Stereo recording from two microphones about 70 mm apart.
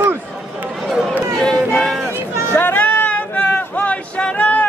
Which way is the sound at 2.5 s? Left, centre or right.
Left.